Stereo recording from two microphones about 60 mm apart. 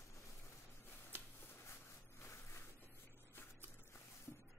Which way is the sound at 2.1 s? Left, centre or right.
Left.